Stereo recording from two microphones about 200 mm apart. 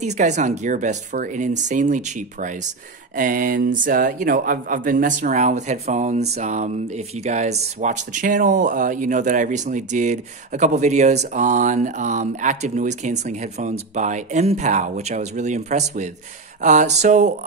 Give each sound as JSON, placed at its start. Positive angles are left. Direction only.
{"t": 0.0, "sound": "speech", "side_deg": -35}